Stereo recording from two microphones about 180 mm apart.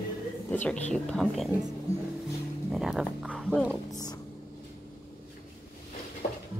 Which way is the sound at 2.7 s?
5° right (ahead or behind).